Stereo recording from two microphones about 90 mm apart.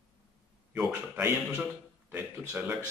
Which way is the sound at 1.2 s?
25° right (ahead or behind).